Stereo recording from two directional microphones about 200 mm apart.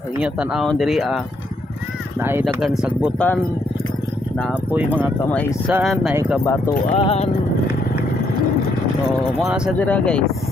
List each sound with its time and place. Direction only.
0.2 s speech: 5° right (ahead or behind)
4.9 s speech: 10° left (ahead or behind)
5.7 s speech: 5° right (ahead or behind)
6.4 s speech: 15° left (ahead or behind)
6.9 s speech: 30° left (ahead or behind)
9.4 s speech: 5° right (ahead or behind)